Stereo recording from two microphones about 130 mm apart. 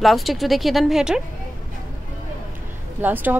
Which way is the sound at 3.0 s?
15° right (ahead or behind).